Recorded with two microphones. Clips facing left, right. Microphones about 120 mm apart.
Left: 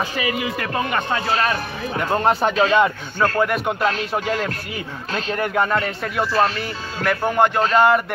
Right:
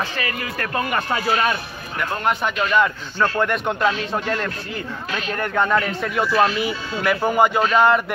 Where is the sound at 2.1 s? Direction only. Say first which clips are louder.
Left 4 dB; 35° left (ahead or behind).